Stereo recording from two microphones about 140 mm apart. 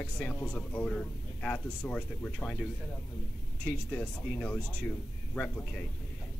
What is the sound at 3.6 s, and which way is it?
Speech, 10° left (ahead or behind).